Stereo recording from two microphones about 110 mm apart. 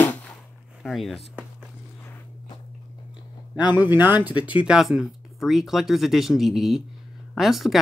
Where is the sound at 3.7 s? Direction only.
15° right (ahead or behind).